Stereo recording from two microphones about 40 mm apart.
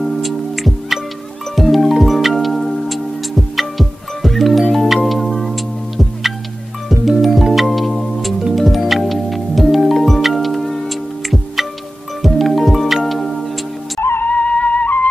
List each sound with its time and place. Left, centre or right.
0.0 s music: centre
14.2 s music: left